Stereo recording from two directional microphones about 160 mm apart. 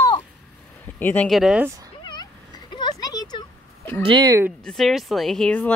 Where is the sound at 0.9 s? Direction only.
10° left (ahead or behind).